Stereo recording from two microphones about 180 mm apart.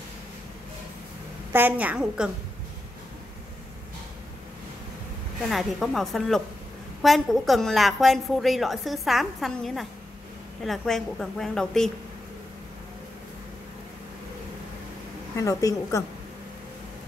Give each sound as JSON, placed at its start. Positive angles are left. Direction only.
{"t": 1.5, "sound": "a woman's voice", "side_deg": -10}
{"t": 5.5, "sound": "a woman's voice", "side_deg": 0}
{"t": 15.3, "sound": "a woman's voice", "side_deg": 15}